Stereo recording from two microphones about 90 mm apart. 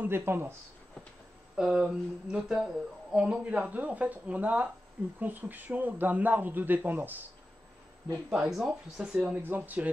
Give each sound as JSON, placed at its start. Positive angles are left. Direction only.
{"t": 0.0, "sound": "a man's voice", "side_deg": -25}
{"t": 1.6, "sound": "a man's voice", "side_deg": -5}
{"t": 8.3, "sound": "speech", "side_deg": -10}